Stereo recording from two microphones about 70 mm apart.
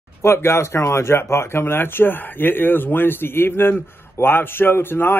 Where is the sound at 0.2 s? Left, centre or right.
Left.